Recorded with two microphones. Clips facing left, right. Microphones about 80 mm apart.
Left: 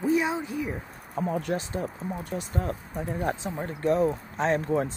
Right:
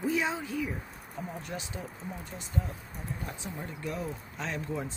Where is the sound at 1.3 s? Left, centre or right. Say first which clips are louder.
Left 13 dB; left.